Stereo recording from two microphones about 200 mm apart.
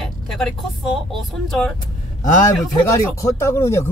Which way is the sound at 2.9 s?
15° left (ahead or behind).